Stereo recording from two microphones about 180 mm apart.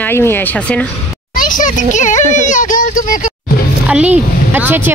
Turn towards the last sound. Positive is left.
turn(degrees=-10)  # may be behind; listen again after turning